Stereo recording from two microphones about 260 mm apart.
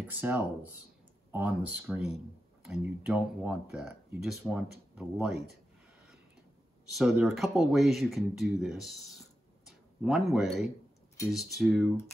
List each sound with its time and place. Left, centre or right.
0.1 s speech: centre
6.9 s speech: centre